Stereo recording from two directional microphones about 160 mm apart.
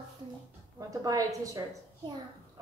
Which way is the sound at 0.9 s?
20° right (ahead or behind).